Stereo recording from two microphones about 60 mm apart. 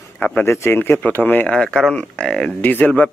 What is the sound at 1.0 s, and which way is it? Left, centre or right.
Speech, left.